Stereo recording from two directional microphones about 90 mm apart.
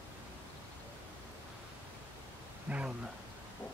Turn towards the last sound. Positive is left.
turn(degrees=-20)  # may be behind; listen again after turning